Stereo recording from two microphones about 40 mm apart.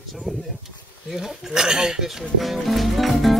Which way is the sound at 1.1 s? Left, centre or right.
Centre.